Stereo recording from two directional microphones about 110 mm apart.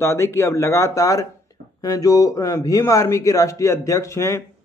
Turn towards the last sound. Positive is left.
turn(degrees=25)  # may be behind; listen again after turning